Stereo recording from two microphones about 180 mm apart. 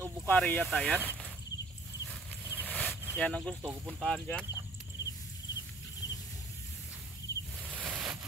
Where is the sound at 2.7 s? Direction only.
5° left (ahead or behind).